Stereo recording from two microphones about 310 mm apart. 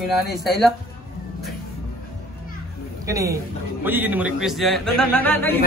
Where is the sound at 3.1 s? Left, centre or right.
Centre.